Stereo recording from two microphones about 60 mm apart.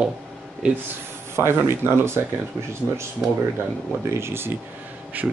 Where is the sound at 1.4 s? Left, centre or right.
Right.